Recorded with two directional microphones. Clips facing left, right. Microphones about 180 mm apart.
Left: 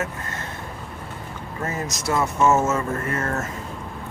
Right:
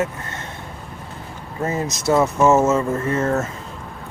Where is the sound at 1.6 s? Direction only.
20° right (ahead or behind).